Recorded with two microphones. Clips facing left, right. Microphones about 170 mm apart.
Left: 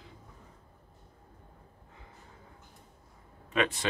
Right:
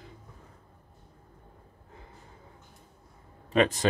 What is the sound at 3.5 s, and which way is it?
Speech, 40° right (ahead or behind).